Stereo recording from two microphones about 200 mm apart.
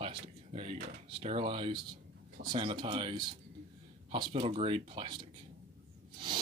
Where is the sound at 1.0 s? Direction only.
30° right (ahead or behind).